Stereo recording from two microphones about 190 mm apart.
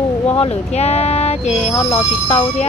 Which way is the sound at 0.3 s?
30° left (ahead or behind).